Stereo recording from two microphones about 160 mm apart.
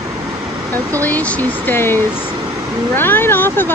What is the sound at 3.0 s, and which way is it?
Speech, 15° left (ahead or behind).